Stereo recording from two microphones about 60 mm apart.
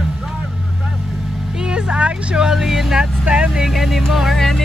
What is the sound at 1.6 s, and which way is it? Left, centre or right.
Vehicle, centre.